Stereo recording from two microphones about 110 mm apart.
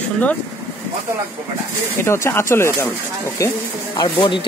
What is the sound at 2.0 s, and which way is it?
Speech, 25° left (ahead or behind).